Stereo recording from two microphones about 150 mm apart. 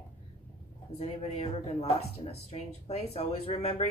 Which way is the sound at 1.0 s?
40° left (ahead or behind).